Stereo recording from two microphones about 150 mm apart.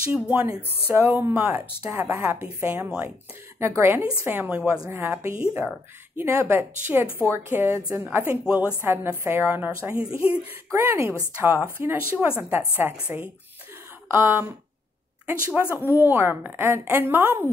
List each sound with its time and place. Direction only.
0.1 s a woman's voice: 15° right (ahead or behind)